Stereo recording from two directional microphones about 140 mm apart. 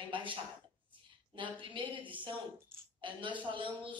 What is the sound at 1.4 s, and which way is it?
Speech, 35° right (ahead or behind).